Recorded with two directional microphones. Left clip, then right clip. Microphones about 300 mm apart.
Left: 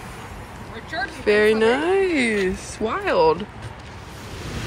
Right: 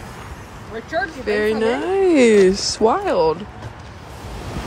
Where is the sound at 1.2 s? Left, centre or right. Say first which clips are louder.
Left 4 dB; centre.